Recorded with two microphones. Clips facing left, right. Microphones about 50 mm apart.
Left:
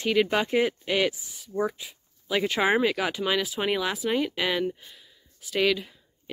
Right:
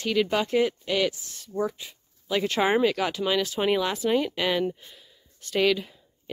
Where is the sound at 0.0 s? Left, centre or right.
Centre.